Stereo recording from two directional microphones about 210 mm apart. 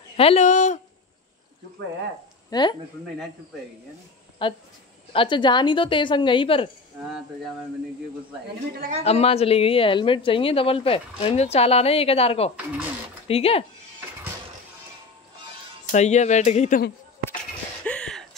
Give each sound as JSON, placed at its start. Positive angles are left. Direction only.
{"t": 0.2, "sound": "speech", "side_deg": 30}
{"t": 2.5, "sound": "speech", "side_deg": 20}
{"t": 4.4, "sound": "speech", "side_deg": 25}
{"t": 8.7, "sound": "a woman's voice", "side_deg": -40}
{"t": 9.0, "sound": "speech", "side_deg": 30}
{"t": 15.9, "sound": "speech", "side_deg": 35}
{"t": 17.8, "sound": "a sound", "side_deg": 5}